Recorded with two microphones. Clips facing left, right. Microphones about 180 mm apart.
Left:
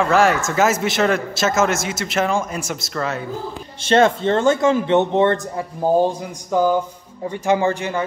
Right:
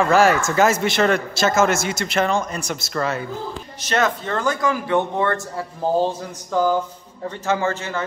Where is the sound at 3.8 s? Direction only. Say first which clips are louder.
Left 6 dB; 30° left (ahead or behind).